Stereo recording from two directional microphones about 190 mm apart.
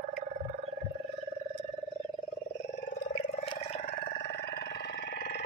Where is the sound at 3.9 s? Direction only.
55° left (ahead or behind).